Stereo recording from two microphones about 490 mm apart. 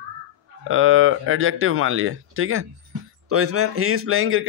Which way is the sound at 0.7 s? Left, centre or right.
Right.